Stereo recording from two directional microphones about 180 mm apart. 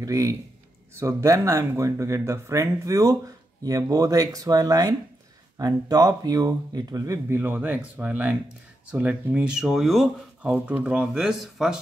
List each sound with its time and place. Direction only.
0.0 s speech: 20° right (ahead or behind); by 11.8 s centre (ahead or behind)